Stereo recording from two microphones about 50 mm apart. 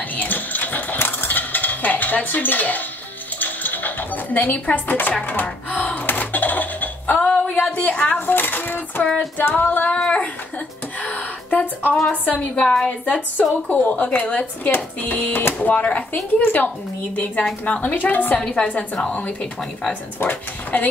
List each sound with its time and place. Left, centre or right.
0.1 s cutlery: left
3.3 s dishes: left
5.1 s speech: left
6.0 s a sound: left
7.9 s speech: left
11.0 s a sound: left
12.1 s a woman's voice: left
12.6 s a woman's voice: centre
13.0 s a woman's voice: left
16.3 s a woman's voice: left
16.6 s a woman's voice: left
19.9 s a woman's voice: left